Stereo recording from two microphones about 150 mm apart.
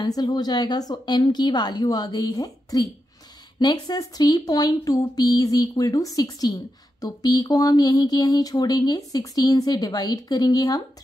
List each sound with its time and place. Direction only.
0.0 s speech: 25° left (ahead or behind)